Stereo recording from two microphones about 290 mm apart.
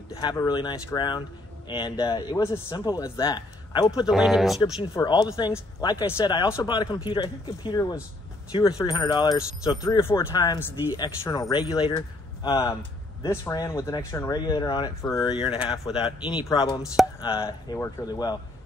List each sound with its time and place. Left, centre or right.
0.1 s a man's voice: centre
4.1 s speech: centre
4.9 s a man's voice: centre